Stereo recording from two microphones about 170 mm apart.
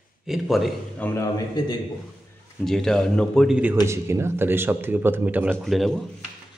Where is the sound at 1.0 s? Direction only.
15° left (ahead or behind).